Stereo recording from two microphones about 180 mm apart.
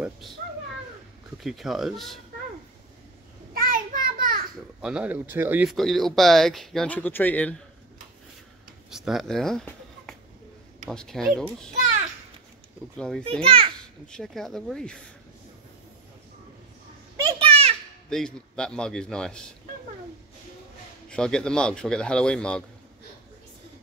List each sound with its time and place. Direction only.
1.4 s speech: centre (ahead or behind)
3.5 s a sound: 50° right (ahead or behind)
4.8 s speech: 5° right (ahead or behind); by 7.5 s 10° left (ahead or behind)
8.9 s a sound: centre (ahead or behind)
10.9 s speech: centre (ahead or behind)
12.9 s speech: 5° left (ahead or behind)
13.4 s a child's voice: 30° right (ahead or behind)
13.7 s speech: 5° left (ahead or behind)
17.2 s children playing: 25° right (ahead or behind)
18.1 s speech: 5° left (ahead or behind)
21.1 s speech: 5° left (ahead or behind)